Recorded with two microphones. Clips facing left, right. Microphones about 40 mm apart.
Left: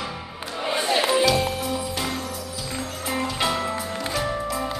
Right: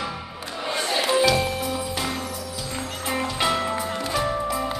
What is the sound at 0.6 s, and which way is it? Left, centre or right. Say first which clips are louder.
Music: left 2 dB; centre.